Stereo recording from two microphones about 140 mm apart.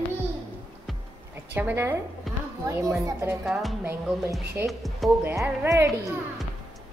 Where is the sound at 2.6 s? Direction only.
20° right (ahead or behind).